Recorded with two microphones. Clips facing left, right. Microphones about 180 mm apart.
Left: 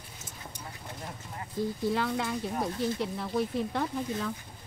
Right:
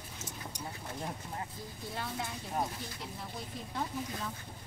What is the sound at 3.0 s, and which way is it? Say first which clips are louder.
Speech: left 13 dB; 70° left (ahead or behind).